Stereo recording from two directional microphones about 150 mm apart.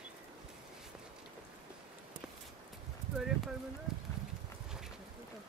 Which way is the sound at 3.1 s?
Centre (ahead or behind).